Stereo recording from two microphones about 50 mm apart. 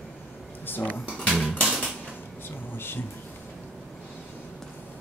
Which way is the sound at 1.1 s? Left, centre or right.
Centre.